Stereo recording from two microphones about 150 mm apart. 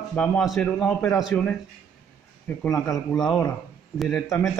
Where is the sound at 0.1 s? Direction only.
10° left (ahead or behind).